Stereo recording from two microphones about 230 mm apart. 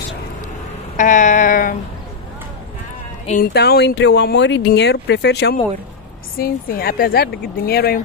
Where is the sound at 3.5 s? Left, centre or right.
Left.